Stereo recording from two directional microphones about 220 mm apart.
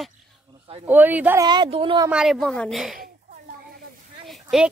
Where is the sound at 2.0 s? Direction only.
5° right (ahead or behind).